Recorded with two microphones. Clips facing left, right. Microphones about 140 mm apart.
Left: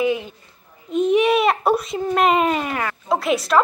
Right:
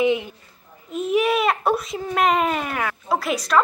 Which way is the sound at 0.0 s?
20° right (ahead or behind).